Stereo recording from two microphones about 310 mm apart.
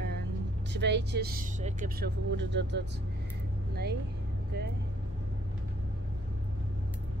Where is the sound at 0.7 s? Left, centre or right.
Right.